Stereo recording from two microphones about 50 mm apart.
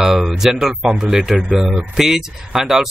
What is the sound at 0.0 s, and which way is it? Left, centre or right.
Speech, centre.